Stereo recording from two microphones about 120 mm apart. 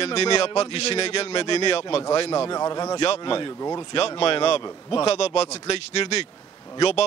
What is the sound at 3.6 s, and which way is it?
Speech, 30° left (ahead or behind).